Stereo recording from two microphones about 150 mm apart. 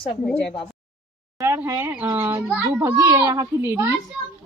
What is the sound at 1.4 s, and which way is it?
Speech, 20° right (ahead or behind).